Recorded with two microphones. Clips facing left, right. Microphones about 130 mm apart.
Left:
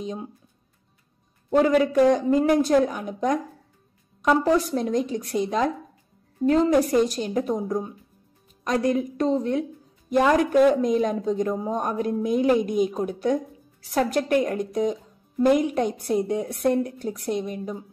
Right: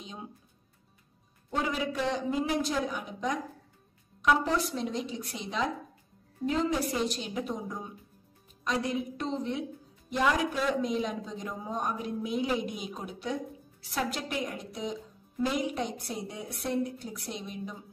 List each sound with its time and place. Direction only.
1.5 s a woman's voice: 55° left (ahead or behind)
8.8 s a woman's voice: 45° left (ahead or behind)